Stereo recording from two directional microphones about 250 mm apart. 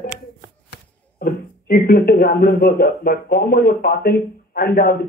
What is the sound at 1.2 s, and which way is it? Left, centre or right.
Speech, left.